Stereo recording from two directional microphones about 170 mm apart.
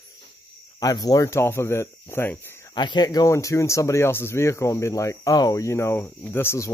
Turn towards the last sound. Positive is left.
turn(degrees=15)  # may be behind; listen again after turning